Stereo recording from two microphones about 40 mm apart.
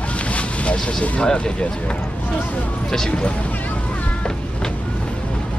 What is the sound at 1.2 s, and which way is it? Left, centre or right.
Speech, left.